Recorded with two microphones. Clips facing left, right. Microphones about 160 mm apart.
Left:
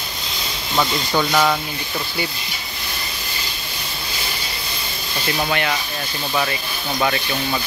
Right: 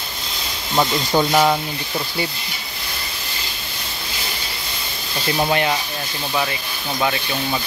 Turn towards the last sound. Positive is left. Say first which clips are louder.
# even
turn(degrees=-5)  # may be behind; listen again after turning